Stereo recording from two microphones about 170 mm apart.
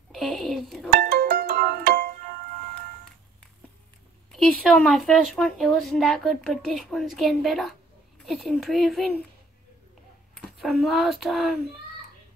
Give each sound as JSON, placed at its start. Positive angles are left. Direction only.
{"t": 0.1, "sound": "telephone dialing", "side_deg": 0}
{"t": 0.8, "sound": "music", "side_deg": -70}
{"t": 4.3, "sound": "a woman's voice", "side_deg": 0}
{"t": 10.3, "sound": "speech", "side_deg": 0}